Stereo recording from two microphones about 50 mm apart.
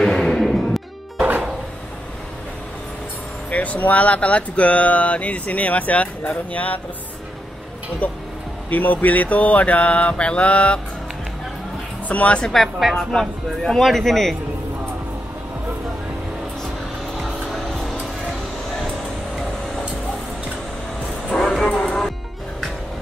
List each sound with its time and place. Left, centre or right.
0.0 s music: centre
3.4 s speech: left
8.0 s speech: left
12.1 s speech: left
12.9 s speech: centre
17.5 s music: centre
21.3 s vehicle: centre
21.8 s music: centre